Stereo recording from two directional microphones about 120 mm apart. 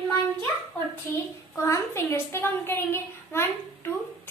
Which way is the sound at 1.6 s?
25° left (ahead or behind).